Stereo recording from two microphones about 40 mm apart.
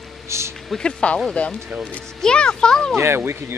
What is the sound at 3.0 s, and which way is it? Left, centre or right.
Speech, right.